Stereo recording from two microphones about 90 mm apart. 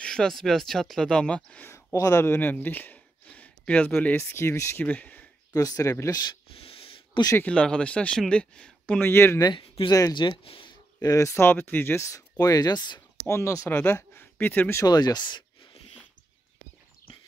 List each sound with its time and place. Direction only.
0.0 s speech: 5° left (ahead or behind)
1.7 s speech: 35° left (ahead or behind)
2.2 s speech: 25° left (ahead or behind)
4.8 s speech: 15° left (ahead or behind)
5.5 s speech: 40° left (ahead or behind)
6.5 s a sound: 90° left
7.4 s speech: 10° left (ahead or behind)
9.0 s speech: 30° left (ahead or behind)
9.8 s speech: 40° left (ahead or behind)
10.1 s speech: 60° left (ahead or behind); by 10.7 s 80° left
11.0 s speech: 40° left (ahead or behind)
13.3 s speech: 35° left (ahead or behind)
13.7 s speech: 20° left (ahead or behind)
14.9 s speech: 50° left (ahead or behind)